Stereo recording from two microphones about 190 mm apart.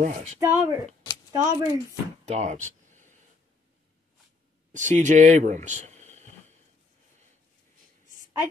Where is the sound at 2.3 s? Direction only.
35° right (ahead or behind).